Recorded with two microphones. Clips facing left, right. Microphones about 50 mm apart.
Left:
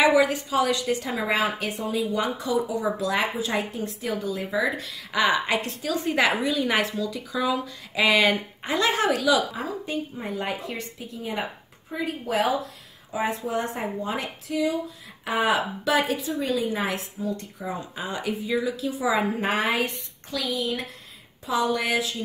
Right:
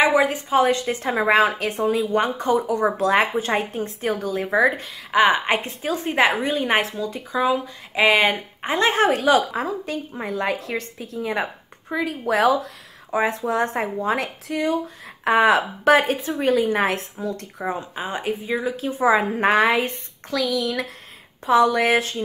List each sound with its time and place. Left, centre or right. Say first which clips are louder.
0.0 s a woman's voice: right 1 dB; right
4.8 s a woman's voice: right 6 dB; right
9.5 s speech: right 4 dB; right
11.9 s a woman's voice: right 5 dB; right
17.7 s a woman's voice: right 3 dB; right
18.9 s a woman's voice: right 7 dB; right